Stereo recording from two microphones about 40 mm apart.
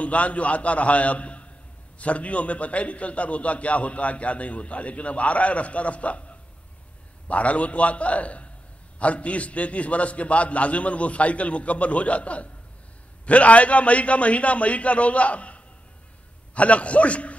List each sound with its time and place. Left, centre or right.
0.0 s a man's voice: left